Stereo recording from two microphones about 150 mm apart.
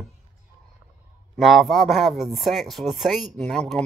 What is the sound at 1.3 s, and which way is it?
Speech, centre (ahead or behind).